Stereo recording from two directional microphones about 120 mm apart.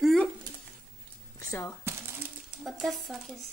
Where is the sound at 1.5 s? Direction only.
20° left (ahead or behind).